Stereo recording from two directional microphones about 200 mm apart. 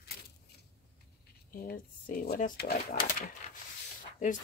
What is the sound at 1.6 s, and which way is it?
Speech, 45° left (ahead or behind).